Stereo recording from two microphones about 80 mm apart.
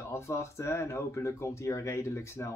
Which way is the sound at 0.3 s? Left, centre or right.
Left.